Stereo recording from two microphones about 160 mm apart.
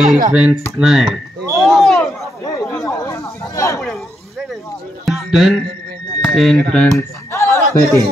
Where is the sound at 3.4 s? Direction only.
20° left (ahead or behind).